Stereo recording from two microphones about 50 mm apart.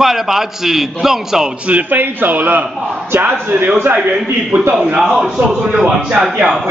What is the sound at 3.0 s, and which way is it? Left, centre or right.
Speech, right.